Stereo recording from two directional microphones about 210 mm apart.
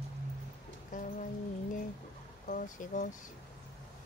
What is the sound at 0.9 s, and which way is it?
Speech, 35° left (ahead or behind).